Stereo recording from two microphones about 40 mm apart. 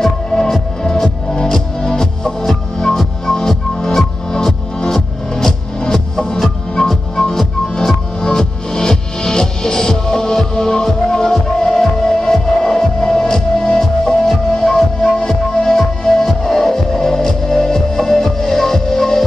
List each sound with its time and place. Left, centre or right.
0.0 s music: centre
1.3 s music: centre